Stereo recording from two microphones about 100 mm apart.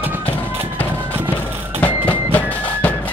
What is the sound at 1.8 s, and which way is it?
Music, 15° left (ahead or behind).